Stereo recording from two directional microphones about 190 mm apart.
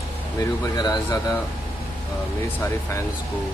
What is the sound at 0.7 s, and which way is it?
Speech, 20° left (ahead or behind).